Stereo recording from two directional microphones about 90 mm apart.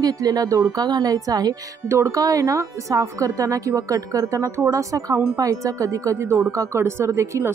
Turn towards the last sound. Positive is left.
turn(degrees=-35)  # may be behind; listen again after turning